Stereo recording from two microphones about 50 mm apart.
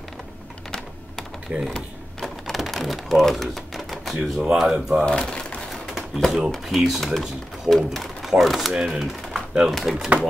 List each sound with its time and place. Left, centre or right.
1.5 s speech: centre
2.5 s a sound: centre
3.3 s typewriter: centre
4.4 s speech: centre
5.0 s speech: centre
5.7 s a sound: centre
6.5 s speech: centre
8.7 s speech: centre
9.0 s a sound: centre
9.7 s speech: centre
9.9 s speech: right